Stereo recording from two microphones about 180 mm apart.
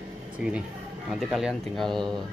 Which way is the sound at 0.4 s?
5° right (ahead or behind).